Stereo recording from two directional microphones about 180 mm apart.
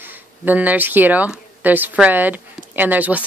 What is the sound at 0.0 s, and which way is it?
Speech, 10° right (ahead or behind).